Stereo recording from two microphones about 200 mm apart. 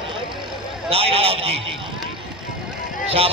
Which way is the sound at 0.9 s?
30° right (ahead or behind).